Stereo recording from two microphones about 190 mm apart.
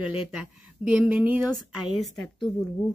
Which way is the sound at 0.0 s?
5° right (ahead or behind).